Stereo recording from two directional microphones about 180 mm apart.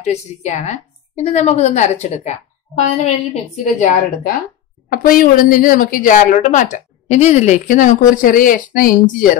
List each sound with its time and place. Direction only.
0.0 s a woman's voice: 40° left (ahead or behind)